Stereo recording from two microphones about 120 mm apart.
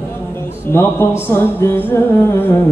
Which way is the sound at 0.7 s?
20° left (ahead or behind).